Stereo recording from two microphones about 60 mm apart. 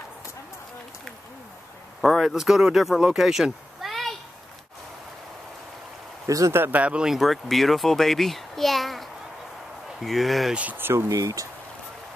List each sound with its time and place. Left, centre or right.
2.0 s a sound: centre
2.2 s a child's voice: centre
3.8 s a sound: centre
6.2 s speech: right
6.7 s speech: right
7.1 s a child's voice: centre
10.5 s speech: right
10.8 s speech: right
11.1 s speech: right